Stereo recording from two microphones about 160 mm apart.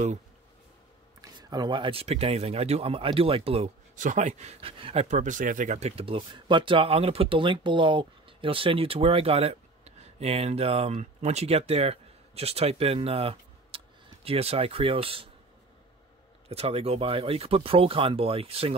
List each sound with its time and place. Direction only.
1.2 s speech: 25° right (ahead or behind)
3.9 s speech: 50° right (ahead or behind); by 15.2 s 35° right (ahead or behind)
16.4 s speech: 40° right (ahead or behind)